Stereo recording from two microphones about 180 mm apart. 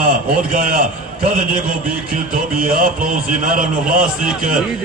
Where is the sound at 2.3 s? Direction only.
50° right (ahead or behind).